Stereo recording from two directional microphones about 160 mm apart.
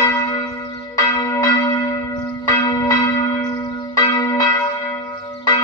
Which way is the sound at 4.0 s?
25° left (ahead or behind).